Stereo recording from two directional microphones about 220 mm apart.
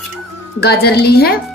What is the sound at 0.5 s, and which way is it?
Speech, 45° left (ahead or behind).